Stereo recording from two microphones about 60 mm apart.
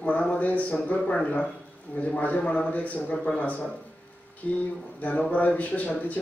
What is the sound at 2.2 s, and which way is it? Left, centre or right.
Speech, left.